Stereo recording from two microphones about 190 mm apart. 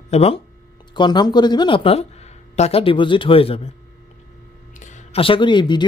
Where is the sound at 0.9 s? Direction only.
25° left (ahead or behind).